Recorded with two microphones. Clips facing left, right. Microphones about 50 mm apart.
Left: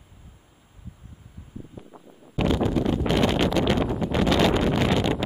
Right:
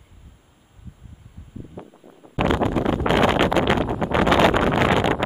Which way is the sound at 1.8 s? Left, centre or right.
Right.